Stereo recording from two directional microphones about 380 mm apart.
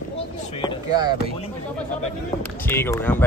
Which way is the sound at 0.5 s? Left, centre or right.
Centre.